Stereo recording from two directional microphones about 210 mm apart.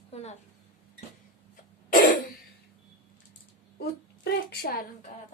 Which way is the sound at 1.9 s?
40° left (ahead or behind).